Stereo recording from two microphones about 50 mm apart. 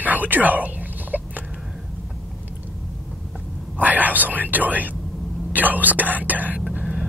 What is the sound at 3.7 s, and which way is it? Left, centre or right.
Speech, right.